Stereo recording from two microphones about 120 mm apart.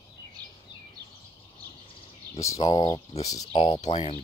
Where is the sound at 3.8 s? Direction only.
65° left (ahead or behind).